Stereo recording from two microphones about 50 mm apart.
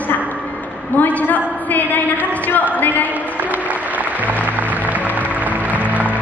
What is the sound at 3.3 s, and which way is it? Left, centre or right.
Music, right.